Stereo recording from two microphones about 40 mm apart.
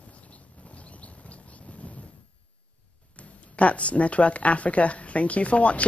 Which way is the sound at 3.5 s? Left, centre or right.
Left.